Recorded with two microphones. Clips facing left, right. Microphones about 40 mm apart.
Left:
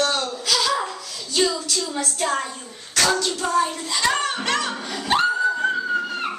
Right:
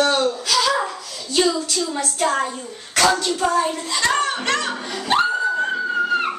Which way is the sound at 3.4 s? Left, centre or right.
Centre.